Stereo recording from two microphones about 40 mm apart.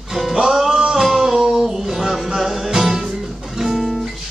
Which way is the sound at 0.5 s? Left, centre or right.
Centre.